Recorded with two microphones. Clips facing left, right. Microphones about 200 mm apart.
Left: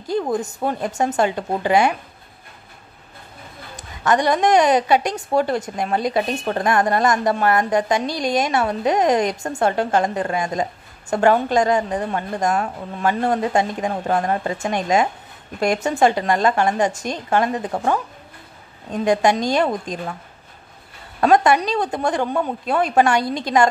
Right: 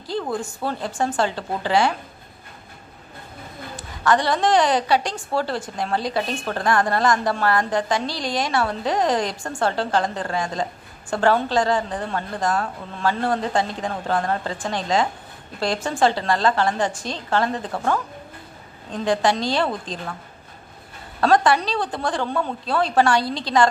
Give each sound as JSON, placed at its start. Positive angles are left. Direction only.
{"t": 0.0, "sound": "a woman's voice", "side_deg": 20}
{"t": 4.0, "sound": "a woman's voice", "side_deg": 20}
{"t": 21.2, "sound": "a woman's voice", "side_deg": 15}
{"t": 23.2, "sound": "a woman's voice", "side_deg": 50}